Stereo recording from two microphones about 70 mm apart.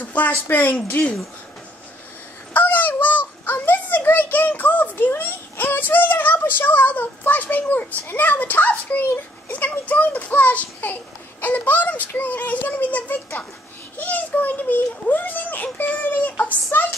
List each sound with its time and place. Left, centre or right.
0.0 s a child's voice: left
2.5 s a child's voice: left
16.7 s a sound: left